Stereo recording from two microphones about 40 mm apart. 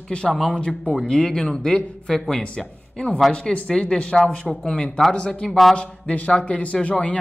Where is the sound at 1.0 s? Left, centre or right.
Centre.